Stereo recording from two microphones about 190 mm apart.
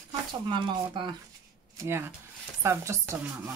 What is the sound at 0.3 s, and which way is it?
Speech, 25° right (ahead or behind).